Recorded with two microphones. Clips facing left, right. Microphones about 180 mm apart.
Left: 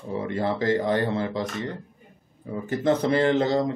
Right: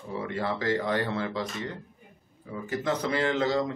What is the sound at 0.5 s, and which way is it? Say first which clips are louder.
Speech: left 4 dB; 20° left (ahead or behind).